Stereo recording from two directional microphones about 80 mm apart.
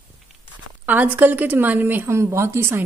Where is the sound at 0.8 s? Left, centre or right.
Right.